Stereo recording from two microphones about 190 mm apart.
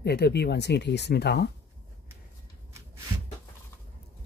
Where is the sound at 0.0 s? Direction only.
60° left (ahead or behind).